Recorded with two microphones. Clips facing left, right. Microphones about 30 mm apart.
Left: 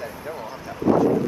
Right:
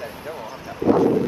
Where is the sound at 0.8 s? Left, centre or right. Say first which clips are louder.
Right 1 dB; right.